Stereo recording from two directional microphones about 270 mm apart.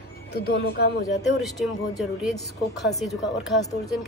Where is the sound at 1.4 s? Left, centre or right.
Centre.